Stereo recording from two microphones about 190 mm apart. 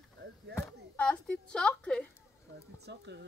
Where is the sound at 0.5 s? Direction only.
10° left (ahead or behind).